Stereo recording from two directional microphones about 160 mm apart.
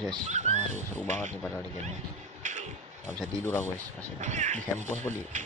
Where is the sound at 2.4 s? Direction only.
50° right (ahead or behind).